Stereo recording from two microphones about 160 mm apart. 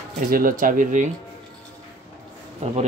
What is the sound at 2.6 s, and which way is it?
Speech, 45° right (ahead or behind).